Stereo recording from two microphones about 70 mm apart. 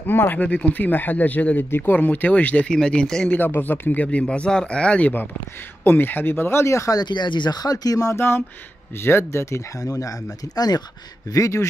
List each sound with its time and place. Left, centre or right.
0.0 s speech: left; by 3.3 s centre
3.3 s speech: left
7.0 s speech: left
8.2 s speech: left
9.8 s speech: left
11.2 s speech: left